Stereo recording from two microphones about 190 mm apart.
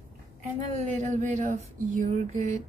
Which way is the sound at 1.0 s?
40° right (ahead or behind).